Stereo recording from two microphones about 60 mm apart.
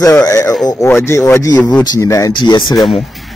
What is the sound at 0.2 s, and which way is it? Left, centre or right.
Speech, left.